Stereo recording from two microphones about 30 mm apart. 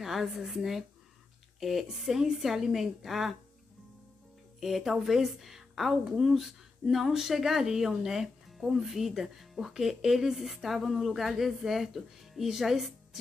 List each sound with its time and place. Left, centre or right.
0.0 s speech: centre
4.6 s a woman's voice: centre
8.5 s music: centre
8.8 s speech: centre